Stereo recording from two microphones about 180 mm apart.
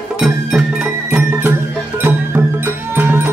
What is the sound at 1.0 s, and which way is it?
Music, 10° right (ahead or behind).